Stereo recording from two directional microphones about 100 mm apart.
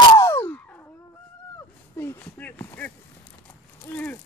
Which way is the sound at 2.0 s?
20° left (ahead or behind).